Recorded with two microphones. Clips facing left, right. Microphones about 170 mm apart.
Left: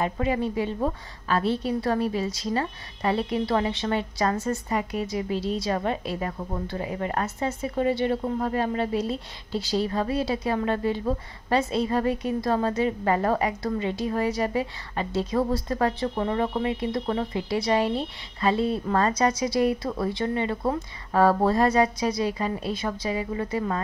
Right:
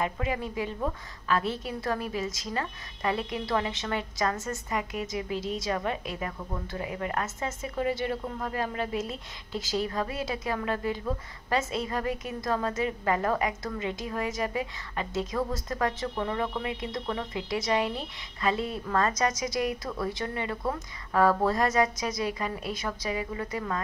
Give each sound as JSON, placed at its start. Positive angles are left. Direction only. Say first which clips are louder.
{"t": 0.0, "sound": "a woman's voice", "louder": "left 5 dB", "side_deg": 30}